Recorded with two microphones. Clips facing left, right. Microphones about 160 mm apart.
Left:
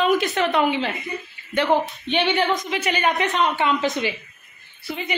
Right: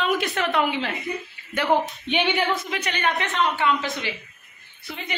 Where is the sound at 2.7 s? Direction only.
5° left (ahead or behind).